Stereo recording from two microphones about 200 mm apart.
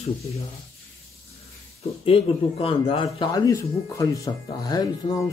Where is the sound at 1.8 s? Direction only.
30° left (ahead or behind).